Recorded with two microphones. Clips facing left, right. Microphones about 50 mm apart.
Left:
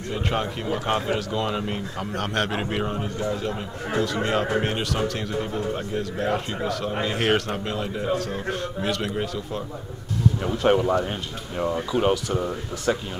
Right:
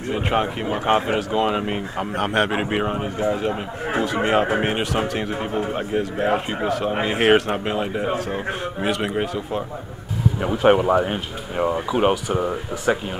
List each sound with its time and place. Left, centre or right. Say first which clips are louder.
0.1 s speech: right 5 dB; right